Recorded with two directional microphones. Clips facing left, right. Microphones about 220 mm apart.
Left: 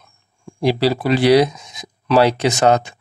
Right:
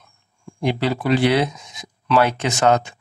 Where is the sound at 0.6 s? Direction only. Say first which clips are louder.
Left 4 dB; 35° left (ahead or behind).